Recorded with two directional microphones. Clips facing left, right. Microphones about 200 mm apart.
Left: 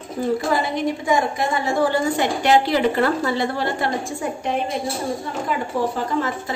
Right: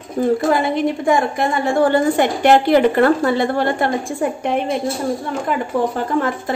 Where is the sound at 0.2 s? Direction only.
50° right (ahead or behind).